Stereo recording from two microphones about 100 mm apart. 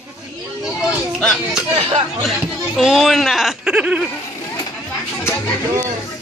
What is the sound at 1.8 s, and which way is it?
Speech, 65° right (ahead or behind).